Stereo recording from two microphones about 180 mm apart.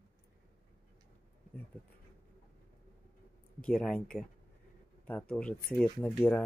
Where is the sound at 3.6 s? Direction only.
5° left (ahead or behind).